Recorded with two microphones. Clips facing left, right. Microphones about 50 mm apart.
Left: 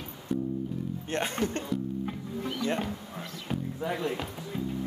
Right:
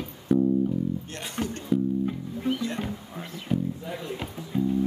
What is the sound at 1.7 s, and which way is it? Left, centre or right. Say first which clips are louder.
Music: right 7 dB; right.